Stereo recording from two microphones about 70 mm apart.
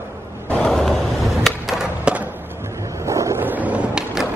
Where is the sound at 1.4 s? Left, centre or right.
Centre.